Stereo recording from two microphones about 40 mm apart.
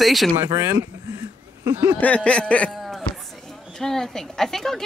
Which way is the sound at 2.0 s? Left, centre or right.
Left.